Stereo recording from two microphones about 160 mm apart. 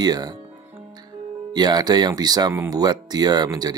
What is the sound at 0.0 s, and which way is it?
Speech, 25° right (ahead or behind).